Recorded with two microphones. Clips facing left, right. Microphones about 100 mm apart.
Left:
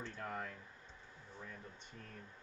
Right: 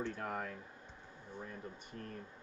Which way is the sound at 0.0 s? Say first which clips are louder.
Right 5 dB; 55° right (ahead or behind).